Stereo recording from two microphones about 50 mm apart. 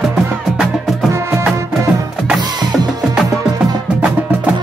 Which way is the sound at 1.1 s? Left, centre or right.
Right.